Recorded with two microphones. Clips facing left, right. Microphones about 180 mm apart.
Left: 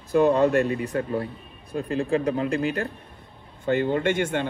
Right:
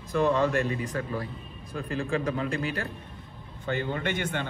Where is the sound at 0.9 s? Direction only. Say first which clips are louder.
Left 6 dB; 30° left (ahead or behind).